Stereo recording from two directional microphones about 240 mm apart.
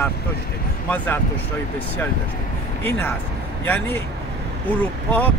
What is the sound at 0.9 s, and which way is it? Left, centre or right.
Speech, centre.